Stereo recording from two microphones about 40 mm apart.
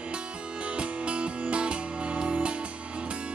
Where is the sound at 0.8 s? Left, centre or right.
Right.